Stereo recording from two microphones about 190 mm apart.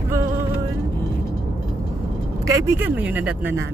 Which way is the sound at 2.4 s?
10° right (ahead or behind).